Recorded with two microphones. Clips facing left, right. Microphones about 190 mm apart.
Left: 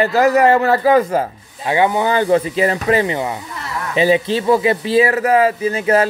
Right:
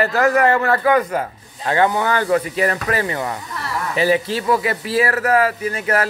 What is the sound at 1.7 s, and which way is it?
Speech, 15° left (ahead or behind).